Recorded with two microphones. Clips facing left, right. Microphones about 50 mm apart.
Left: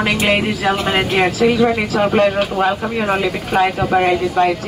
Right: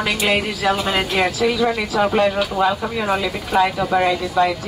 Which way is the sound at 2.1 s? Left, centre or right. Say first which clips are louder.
Left 3 dB; left.